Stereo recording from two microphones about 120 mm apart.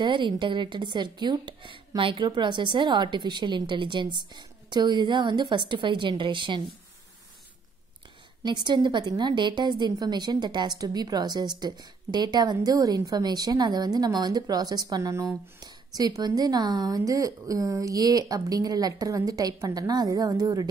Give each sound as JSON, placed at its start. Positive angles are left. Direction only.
{"t": 0.0, "sound": "a woman's voice", "side_deg": -40}
{"t": 8.5, "sound": "a woman's voice", "side_deg": -40}